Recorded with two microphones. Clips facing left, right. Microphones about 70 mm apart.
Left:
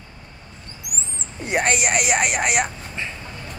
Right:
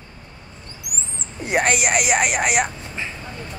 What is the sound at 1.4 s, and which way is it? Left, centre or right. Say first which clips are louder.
Speech: right 1 dB; centre.